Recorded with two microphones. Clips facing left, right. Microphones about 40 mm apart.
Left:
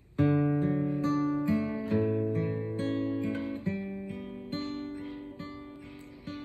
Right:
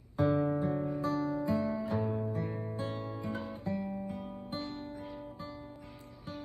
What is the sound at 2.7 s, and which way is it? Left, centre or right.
Guitar, left.